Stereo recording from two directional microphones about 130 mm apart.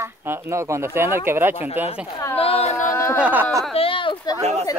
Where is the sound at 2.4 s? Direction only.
50° left (ahead or behind).